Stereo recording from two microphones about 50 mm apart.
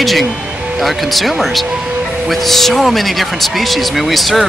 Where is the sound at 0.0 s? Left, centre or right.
Centre.